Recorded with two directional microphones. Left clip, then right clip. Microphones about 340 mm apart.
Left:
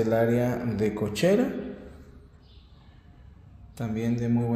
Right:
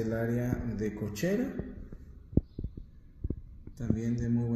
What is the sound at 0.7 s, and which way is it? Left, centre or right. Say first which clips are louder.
Speech: left 8 dB; left.